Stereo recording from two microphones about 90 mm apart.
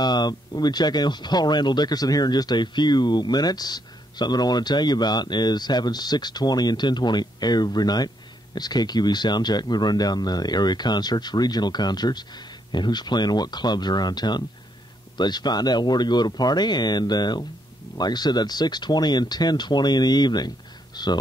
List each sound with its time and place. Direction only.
0.0 s speech: 50° left (ahead or behind)